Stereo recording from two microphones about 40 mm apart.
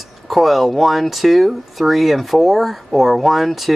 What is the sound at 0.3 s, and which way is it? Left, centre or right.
Speech, centre.